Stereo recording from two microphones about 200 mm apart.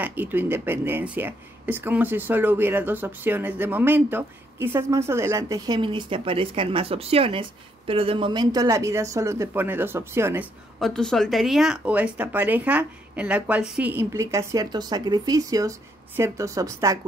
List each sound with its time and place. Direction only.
0.0 s speech: 10° right (ahead or behind)
10.8 s speech: centre (ahead or behind); by 17.0 s 15° right (ahead or behind)